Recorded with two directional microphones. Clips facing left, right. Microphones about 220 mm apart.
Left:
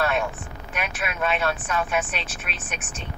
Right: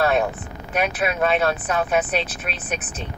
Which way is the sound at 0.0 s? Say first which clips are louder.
Right 5 dB; 35° right (ahead or behind).